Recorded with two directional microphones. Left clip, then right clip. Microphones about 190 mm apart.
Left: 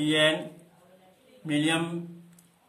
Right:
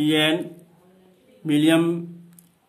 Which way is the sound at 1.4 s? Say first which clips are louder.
Right 8 dB; 45° right (ahead or behind).